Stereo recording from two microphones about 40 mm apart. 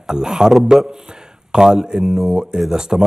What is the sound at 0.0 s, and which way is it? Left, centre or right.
Speech, centre.